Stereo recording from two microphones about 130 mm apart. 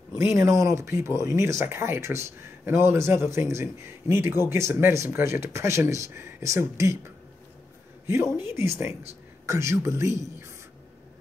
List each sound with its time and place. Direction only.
0.1 s speech: 20° right (ahead or behind)
8.4 s speech: 20° right (ahead or behind)